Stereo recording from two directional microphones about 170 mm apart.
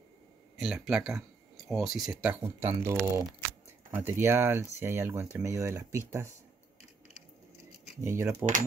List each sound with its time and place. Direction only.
0.6 s speech: 5° right (ahead or behind)
2.6 s speech: 15° right (ahead or behind)
8.0 s speech: 15° right (ahead or behind)